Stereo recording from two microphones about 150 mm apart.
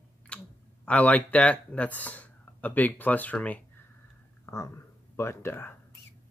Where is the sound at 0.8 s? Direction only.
10° left (ahead or behind).